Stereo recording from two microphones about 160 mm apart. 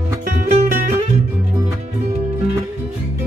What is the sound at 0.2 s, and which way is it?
Music, 50° right (ahead or behind).